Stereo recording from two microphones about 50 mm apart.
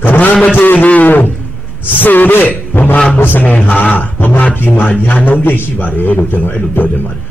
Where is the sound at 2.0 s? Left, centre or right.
Left.